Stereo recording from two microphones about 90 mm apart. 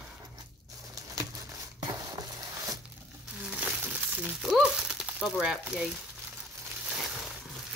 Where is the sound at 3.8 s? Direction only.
15° right (ahead or behind).